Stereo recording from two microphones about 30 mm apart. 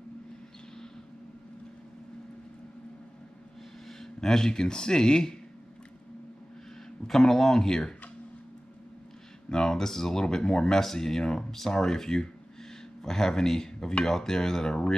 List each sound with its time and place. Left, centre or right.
3.8 s a sound: centre
4.5 s speech: left
7.1 s speech: centre
9.5 s speech: centre
10.8 s speech: centre